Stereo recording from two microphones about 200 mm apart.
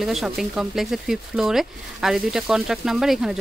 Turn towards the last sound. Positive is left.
turn(degrees=0)  # may be behind; listen again after turning